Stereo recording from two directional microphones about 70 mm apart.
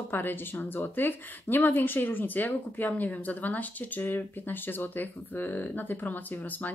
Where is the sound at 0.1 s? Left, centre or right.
Left.